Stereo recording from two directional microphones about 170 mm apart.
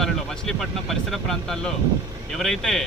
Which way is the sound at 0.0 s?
5° left (ahead or behind).